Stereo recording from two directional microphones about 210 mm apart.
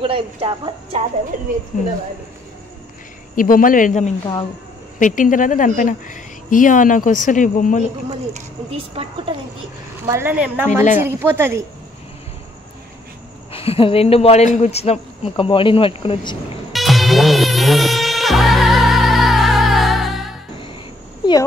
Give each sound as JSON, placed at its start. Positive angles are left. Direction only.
{"t": 0.0, "sound": "a woman's voice", "side_deg": -25}
{"t": 3.3, "sound": "a woman's voice", "side_deg": 40}
{"t": 8.3, "sound": "a woman's voice", "side_deg": -30}
{"t": 10.0, "sound": "speech", "side_deg": -10}
{"t": 13.5, "sound": "speech", "side_deg": 25}
{"t": 16.7, "sound": "music", "side_deg": 0}